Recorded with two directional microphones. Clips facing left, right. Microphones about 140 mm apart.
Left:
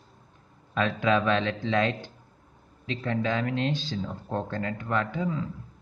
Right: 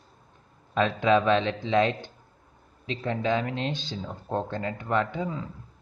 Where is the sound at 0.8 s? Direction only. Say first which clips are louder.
Right 2 dB; 25° right (ahead or behind).